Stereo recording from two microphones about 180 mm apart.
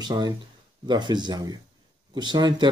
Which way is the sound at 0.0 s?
25° right (ahead or behind).